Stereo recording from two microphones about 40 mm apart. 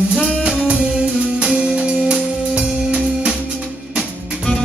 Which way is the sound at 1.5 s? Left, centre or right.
Right.